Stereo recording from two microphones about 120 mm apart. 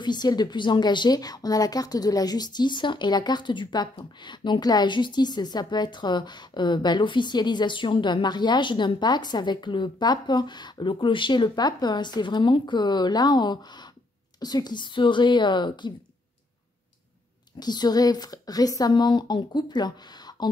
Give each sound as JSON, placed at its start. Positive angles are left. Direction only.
{"t": 0.0, "sound": "a woman's voice", "side_deg": 35}
{"t": 17.6, "sound": "a woman's voice", "side_deg": 35}